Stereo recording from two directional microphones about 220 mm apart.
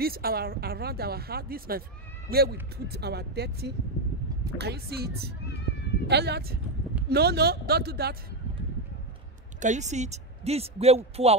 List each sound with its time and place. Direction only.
0.0 s speech: 45° right (ahead or behind)
9.6 s speech: 35° right (ahead or behind)